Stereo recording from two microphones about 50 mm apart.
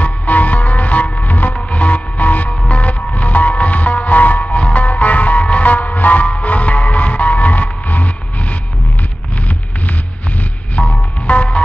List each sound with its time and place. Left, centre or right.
0.0 s music: left
10.8 s music: left